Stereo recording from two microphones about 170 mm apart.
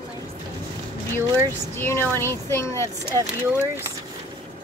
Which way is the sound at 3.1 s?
15° right (ahead or behind).